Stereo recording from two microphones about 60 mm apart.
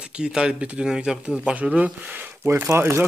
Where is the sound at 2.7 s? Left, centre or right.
Right.